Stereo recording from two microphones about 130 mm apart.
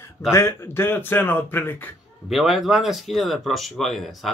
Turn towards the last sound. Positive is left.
turn(degrees=0)  # may be behind; listen again after turning